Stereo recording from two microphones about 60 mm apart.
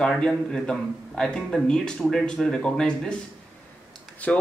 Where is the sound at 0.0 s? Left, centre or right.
Centre.